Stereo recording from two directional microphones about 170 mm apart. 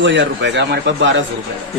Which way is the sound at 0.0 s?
90° right.